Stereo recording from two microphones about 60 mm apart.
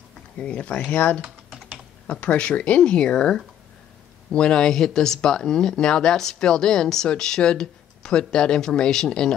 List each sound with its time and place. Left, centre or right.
0.4 s speech: centre